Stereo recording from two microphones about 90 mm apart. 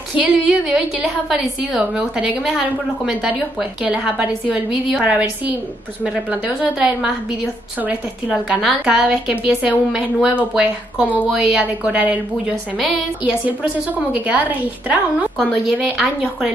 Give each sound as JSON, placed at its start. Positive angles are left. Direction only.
{"t": 0.2, "sound": "a woman's voice", "side_deg": -15}